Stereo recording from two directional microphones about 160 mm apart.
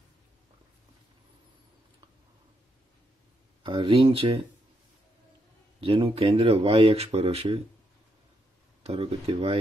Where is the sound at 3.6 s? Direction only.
30° right (ahead or behind).